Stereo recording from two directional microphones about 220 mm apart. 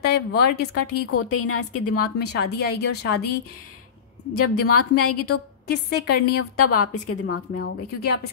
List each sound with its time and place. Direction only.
0.0 s a woman's voice: 45° left (ahead or behind)
1.1 s a woman's voice: 80° left
2.1 s a woman's voice: 50° left (ahead or behind)
4.4 s a woman's voice: 90° left
5.2 s a woman's voice: 45° left (ahead or behind)
6.2 s a woman's voice: 90° left; by 7.7 s 60° left (ahead or behind)